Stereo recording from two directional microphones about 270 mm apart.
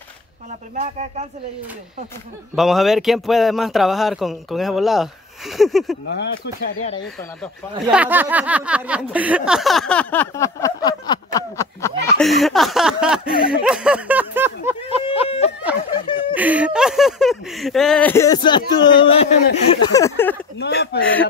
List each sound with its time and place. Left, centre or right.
0.5 s speech: right
2.5 s speech: centre
6.0 s speech: left
7.8 s speech: centre
11.3 s a sound: centre
12.2 s speech: centre
15.0 s a sound: left
15.9 s snicker: centre
16.3 s speech: centre; by 19.8 s left
19.9 s a sound: centre
20.5 s speech: left
21.0 s speech: centre